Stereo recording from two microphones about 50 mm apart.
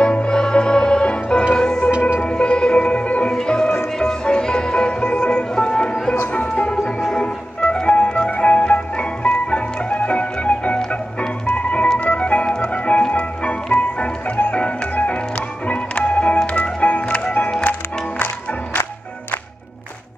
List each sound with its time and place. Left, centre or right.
0.0 s music: left
1.5 s organ: centre
2.2 s music: centre
6.1 s music: left
6.5 s music: left
12.0 s organ: left
13.0 s music: left
18.2 s music: left